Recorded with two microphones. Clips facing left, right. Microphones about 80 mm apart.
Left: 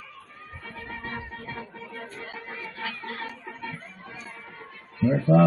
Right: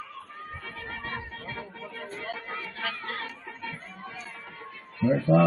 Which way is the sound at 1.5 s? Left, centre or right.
Centre.